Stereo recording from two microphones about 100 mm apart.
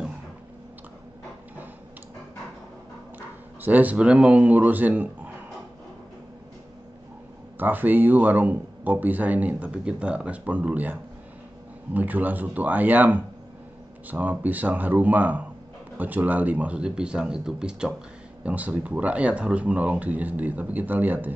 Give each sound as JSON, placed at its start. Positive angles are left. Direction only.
{"t": 3.2, "sound": "speech", "side_deg": -20}
{"t": 7.5, "sound": "speech", "side_deg": -20}